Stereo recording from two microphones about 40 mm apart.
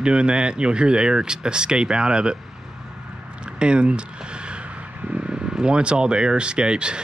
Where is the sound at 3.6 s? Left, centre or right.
Right.